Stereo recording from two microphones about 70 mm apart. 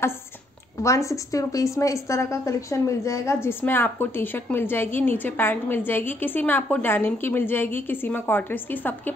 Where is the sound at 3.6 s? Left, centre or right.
Left.